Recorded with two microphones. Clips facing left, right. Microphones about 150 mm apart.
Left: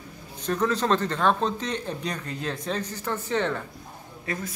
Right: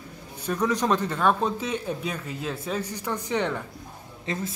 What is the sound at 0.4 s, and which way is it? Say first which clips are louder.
Speech: even; 10° right (ahead or behind).